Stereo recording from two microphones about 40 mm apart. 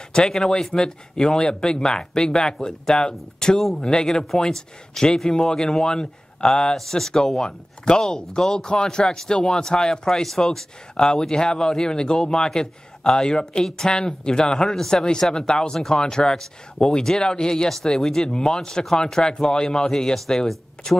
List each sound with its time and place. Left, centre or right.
0.1 s speech: centre